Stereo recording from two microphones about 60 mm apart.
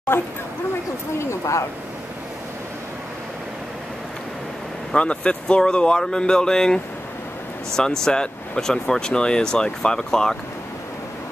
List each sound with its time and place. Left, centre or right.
0.1 s speech: left
1.1 s speech: left
4.9 s speech: centre